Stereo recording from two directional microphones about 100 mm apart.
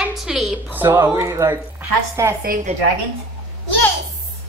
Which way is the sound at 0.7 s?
20° right (ahead or behind).